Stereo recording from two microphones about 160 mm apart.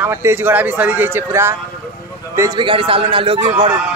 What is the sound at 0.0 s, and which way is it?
Speech, 15° right (ahead or behind).